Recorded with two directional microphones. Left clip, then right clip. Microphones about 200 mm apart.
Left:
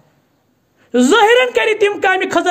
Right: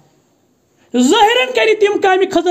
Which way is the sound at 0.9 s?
15° left (ahead or behind).